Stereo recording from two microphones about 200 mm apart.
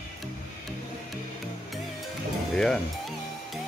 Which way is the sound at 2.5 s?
5° left (ahead or behind).